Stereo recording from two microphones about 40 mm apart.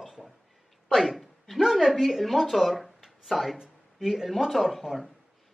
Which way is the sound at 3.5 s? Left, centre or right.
Centre.